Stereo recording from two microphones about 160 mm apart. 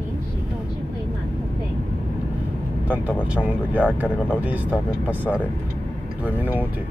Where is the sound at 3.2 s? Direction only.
10° right (ahead or behind).